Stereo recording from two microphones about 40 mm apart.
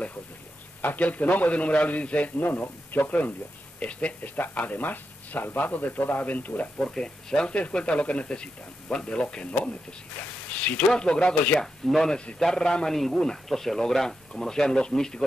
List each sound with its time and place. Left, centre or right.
0.8 s a man's voice: left
2.5 s speech: left
3.8 s a man's voice: left
4.4 s speech: left
6.9 s speech: centre
7.8 s a man's voice: left
11.6 s speech: centre